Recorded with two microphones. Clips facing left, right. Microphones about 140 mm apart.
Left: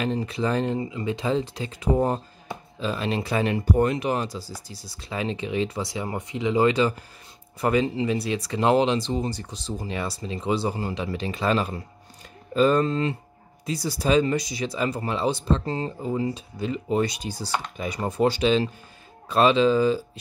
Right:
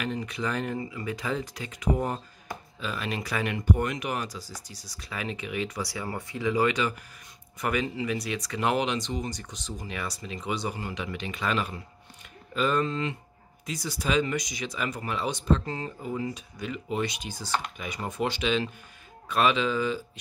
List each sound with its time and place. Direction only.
0.0 s speech: 30° left (ahead or behind)